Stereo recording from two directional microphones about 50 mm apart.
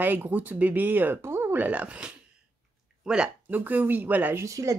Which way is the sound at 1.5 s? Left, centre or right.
Right.